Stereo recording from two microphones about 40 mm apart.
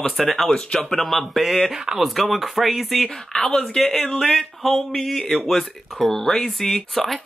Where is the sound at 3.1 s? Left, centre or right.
Centre.